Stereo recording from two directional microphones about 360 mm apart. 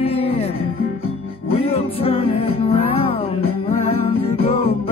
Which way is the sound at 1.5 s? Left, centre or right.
Centre.